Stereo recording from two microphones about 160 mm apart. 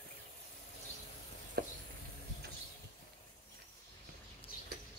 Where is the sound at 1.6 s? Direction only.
75° right (ahead or behind).